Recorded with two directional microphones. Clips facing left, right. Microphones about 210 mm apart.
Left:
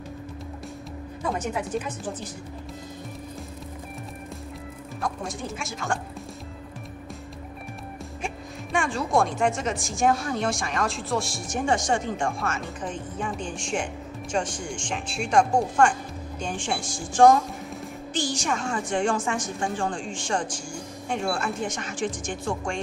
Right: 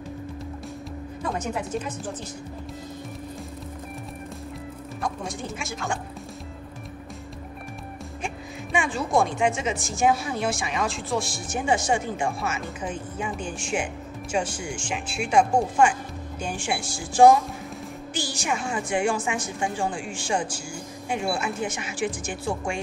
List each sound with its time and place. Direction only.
5.0 s a woman's voice: centre (ahead or behind)
8.7 s a woman's voice: centre (ahead or behind)